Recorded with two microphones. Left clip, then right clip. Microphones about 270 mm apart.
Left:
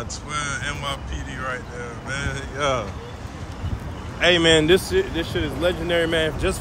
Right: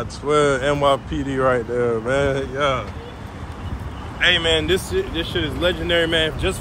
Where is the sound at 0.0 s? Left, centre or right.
Centre.